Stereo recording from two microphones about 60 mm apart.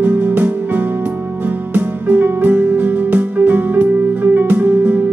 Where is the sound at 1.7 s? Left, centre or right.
Right.